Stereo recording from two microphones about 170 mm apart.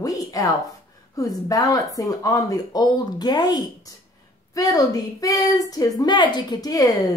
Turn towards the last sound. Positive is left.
turn(degrees=20)  # may be behind; listen again after turning